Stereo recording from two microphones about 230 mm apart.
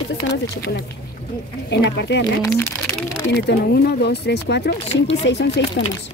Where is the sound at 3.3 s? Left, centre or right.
Left.